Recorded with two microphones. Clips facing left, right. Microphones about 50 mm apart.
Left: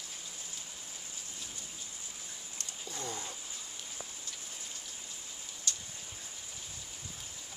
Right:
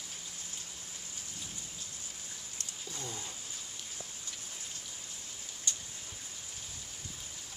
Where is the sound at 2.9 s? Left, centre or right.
Left.